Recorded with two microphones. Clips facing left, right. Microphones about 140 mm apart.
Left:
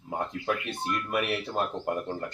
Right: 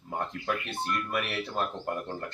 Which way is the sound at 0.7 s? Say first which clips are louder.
Left 1 dB; 15° left (ahead or behind).